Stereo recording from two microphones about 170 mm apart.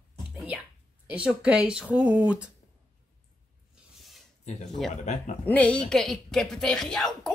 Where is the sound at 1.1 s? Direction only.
5° right (ahead or behind).